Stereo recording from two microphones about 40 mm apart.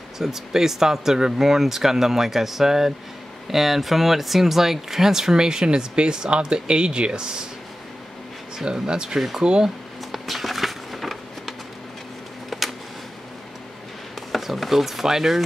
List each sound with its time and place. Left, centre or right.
0.2 s speech: centre
8.6 s speech: centre
10.1 s a sound: centre
14.3 s speech: centre